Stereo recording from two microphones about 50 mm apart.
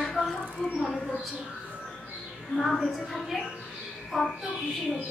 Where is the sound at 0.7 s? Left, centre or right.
Centre.